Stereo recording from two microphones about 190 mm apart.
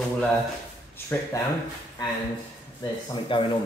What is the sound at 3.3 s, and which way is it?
Speech, 25° left (ahead or behind).